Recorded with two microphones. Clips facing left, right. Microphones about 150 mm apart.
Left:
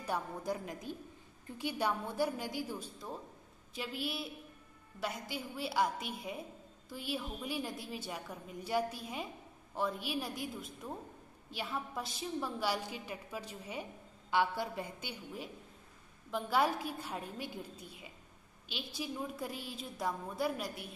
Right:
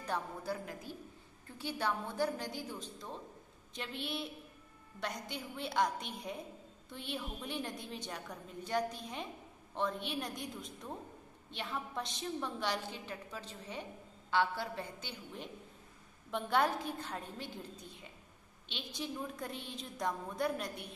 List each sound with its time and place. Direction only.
0.0 s a woman's voice: 15° left (ahead or behind)
5.3 s a woman's voice: 5° left (ahead or behind)